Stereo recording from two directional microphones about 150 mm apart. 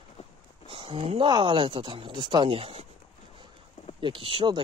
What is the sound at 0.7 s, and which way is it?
Speech, 35° right (ahead or behind).